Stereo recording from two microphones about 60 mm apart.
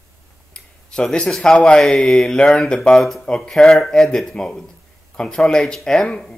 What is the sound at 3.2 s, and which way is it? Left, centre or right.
Speech, centre.